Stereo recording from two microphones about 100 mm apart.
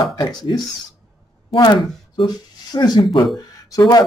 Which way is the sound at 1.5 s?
45° left (ahead or behind).